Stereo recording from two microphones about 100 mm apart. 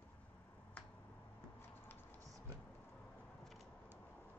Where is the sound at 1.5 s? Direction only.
20° left (ahead or behind).